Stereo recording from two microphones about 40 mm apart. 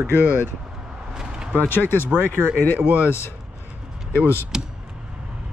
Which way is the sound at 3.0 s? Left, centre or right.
Left.